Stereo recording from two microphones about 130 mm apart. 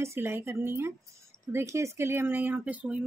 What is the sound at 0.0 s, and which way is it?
A woman's voice, 20° right (ahead or behind).